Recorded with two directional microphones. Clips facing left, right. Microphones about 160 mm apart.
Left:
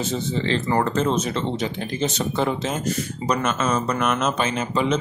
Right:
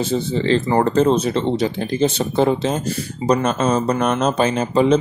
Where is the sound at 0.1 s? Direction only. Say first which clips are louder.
Right 7 dB; 35° right (ahead or behind).